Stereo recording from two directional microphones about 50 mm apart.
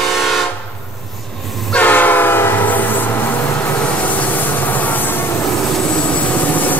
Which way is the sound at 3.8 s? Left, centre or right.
Left.